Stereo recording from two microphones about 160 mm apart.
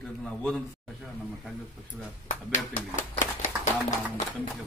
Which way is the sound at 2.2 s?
50° left (ahead or behind).